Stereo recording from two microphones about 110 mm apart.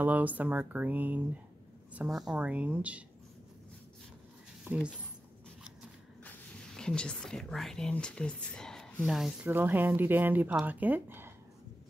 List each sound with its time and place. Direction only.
0.0 s speech: 15° right (ahead or behind)
2.0 s speech: 5° right (ahead or behind)
2.3 s speech: 15° right (ahead or behind)
4.6 s speech: 10° right (ahead or behind)
6.7 s speech: 5° left (ahead or behind)
9.4 s speech: 20° right (ahead or behind)